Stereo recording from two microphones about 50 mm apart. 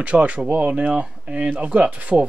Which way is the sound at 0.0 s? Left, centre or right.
Right.